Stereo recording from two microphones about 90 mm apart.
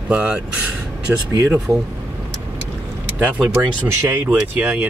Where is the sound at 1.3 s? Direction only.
35° right (ahead or behind).